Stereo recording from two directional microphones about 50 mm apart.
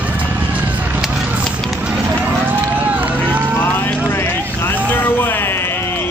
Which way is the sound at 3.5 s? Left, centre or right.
Left.